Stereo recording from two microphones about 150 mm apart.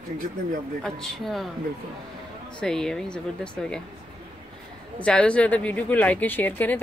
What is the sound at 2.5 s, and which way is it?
A woman's voice, 5° left (ahead or behind).